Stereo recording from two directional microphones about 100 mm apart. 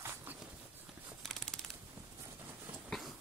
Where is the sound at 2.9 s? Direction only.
Centre (ahead or behind).